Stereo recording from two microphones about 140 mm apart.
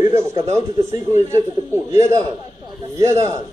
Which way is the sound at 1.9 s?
20° right (ahead or behind).